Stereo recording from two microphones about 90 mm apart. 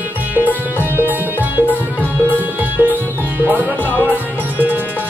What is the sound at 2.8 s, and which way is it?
Music, 20° right (ahead or behind).